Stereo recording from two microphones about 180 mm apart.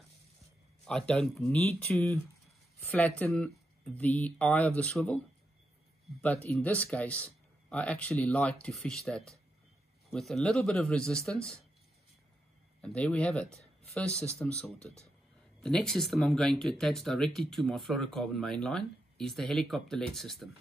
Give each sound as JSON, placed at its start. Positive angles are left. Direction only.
{"t": 0.8, "sound": "speech", "side_deg": 5}
{"t": 6.2, "sound": "speech", "side_deg": 10}
{"t": 12.8, "sound": "speech", "side_deg": 5}